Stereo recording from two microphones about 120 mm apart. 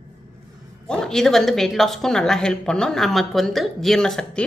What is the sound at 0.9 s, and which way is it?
Speech, 5° left (ahead or behind).